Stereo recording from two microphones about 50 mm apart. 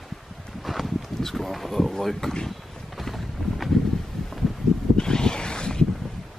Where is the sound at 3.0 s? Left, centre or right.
Centre.